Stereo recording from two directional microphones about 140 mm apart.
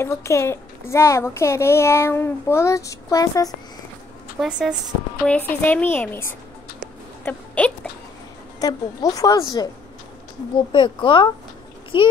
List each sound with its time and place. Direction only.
0.0 s a woman's voice: 20° left (ahead or behind)
4.4 s speech: 5° right (ahead or behind)
5.2 s a woman's voice: 10° left (ahead or behind)
8.5 s a woman's voice: 30° left (ahead or behind)
10.7 s a woman's voice: 35° left (ahead or behind)